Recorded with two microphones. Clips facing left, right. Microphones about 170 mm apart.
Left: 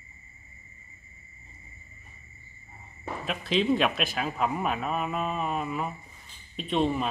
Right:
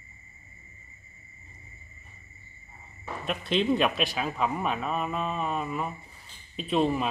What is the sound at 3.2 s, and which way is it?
A man's voice, centre (ahead or behind).